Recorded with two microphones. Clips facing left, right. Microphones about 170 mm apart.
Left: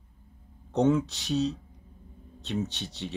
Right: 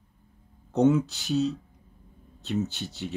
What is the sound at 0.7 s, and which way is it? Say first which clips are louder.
Speech: right 2 dB; 5° right (ahead or behind).